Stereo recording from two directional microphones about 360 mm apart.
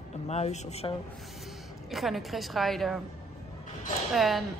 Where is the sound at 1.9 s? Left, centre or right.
Centre.